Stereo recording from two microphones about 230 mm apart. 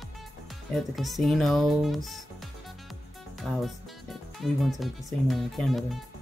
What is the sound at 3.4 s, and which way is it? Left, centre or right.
Music, centre.